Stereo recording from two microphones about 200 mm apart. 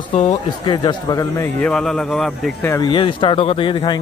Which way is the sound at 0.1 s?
35° left (ahead or behind).